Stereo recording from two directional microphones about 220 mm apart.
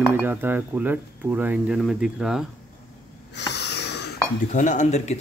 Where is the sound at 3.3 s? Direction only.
50° left (ahead or behind).